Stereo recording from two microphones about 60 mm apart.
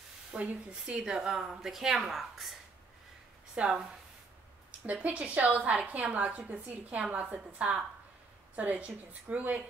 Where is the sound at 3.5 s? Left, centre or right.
Centre.